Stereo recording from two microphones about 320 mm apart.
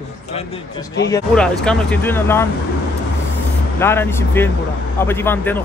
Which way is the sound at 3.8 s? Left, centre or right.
Centre.